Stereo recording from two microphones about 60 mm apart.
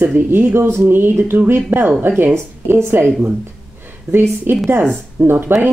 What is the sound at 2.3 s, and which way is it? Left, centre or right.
Speech, right.